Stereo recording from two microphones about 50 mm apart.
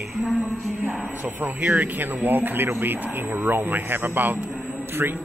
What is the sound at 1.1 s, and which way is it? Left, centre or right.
A man's voice, right.